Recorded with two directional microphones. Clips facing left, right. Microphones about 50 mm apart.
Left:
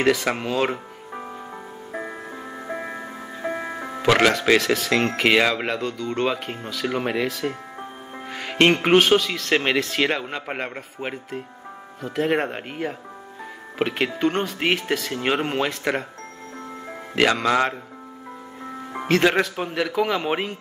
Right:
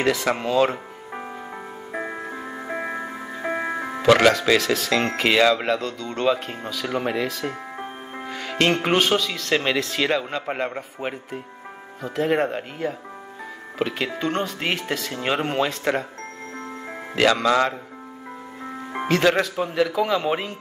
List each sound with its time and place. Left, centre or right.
0.1 s speech: centre
1.9 s music: centre
4.0 s speech: centre
8.3 s music: centre
8.7 s speech: centre
9.5 s speech: left
13.7 s speech: left
17.2 s speech: centre
19.0 s speech: centre